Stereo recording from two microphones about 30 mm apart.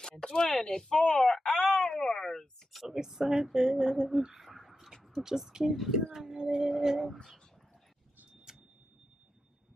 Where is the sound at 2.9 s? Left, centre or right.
Centre.